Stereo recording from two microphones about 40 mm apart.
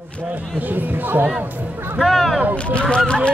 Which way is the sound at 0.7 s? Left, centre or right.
Right.